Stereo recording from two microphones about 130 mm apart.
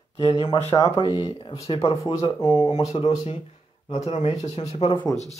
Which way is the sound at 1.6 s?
50° left (ahead or behind).